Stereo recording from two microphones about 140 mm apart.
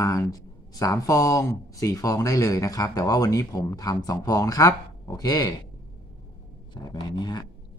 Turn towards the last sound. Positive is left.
turn(degrees=30)  # may be behind; listen again after turning